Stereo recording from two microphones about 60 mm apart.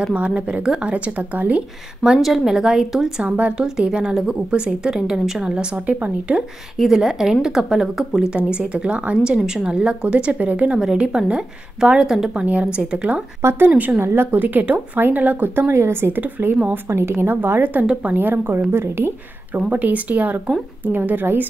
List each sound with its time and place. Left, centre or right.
0.1 s speech: centre
2.2 s a woman's voice: centre
3.2 s speech: right
3.5 s speech: centre
5.5 s speech: centre
6.8 s speech: centre
10.8 s speech: centre
13.4 s speech: right
13.7 s speech: right
14.0 s speech: right
15.7 s speech: right
16.7 s speech: right
19.7 s speech: right